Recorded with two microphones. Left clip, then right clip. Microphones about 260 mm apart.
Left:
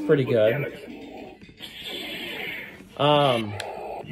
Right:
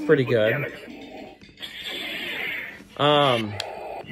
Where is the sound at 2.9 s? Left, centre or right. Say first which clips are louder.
Right 1 dB; right.